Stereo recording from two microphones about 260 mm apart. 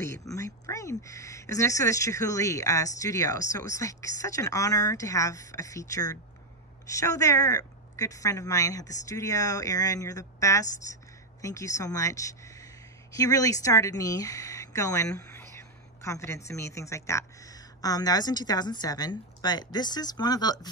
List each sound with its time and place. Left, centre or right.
0.0 s a woman's voice: centre